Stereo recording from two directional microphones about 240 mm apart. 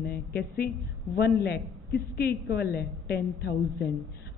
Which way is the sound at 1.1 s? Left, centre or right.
Left.